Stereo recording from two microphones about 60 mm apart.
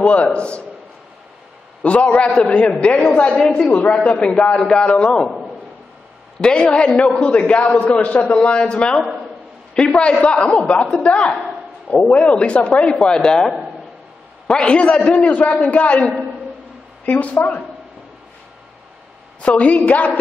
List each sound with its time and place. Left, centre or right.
0.0 s a man's voice: left
1.8 s a man's voice: centre
6.4 s a man's voice: centre
14.5 s a man's voice: centre
19.4 s a man's voice: left